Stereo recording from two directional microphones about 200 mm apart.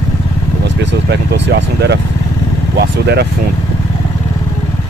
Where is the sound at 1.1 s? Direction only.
55° right (ahead or behind).